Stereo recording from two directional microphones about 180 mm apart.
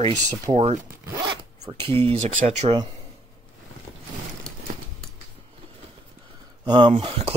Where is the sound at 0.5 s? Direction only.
35° right (ahead or behind).